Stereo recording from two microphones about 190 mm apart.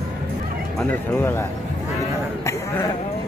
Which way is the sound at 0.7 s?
5° left (ahead or behind).